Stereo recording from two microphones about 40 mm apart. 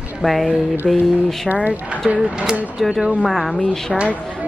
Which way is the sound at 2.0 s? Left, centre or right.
Right.